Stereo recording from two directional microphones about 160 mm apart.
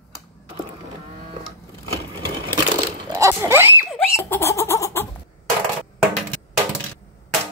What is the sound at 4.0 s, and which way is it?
Giggle, 15° left (ahead or behind).